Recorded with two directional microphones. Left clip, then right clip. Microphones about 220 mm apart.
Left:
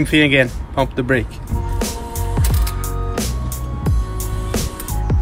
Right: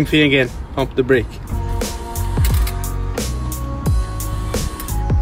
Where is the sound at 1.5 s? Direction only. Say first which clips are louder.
Left 3 dB; centre (ahead or behind).